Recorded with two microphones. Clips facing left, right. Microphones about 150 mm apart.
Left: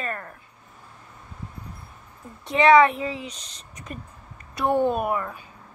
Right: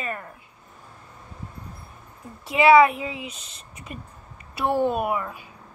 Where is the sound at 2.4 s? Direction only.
5° right (ahead or behind).